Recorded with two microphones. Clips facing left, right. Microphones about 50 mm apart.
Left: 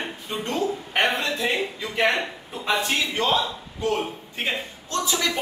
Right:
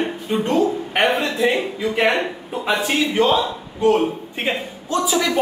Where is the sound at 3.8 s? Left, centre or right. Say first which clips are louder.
Right 9 dB; right.